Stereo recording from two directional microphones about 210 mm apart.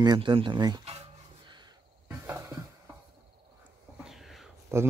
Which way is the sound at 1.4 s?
20° right (ahead or behind).